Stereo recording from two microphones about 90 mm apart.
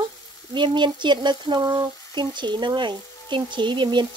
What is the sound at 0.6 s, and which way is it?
Speech, 60° right (ahead or behind).